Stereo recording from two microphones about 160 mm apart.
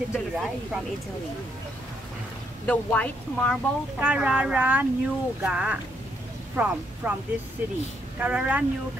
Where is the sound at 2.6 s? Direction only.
10° left (ahead or behind).